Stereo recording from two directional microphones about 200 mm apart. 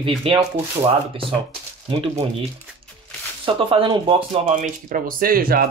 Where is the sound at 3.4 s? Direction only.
25° right (ahead or behind).